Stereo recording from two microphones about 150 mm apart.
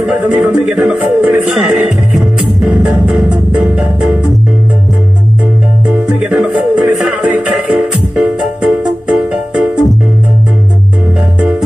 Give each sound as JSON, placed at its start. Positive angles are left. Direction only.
{"t": 0.0, "sound": "speech", "side_deg": -5}
{"t": 5.9, "sound": "music", "side_deg": -5}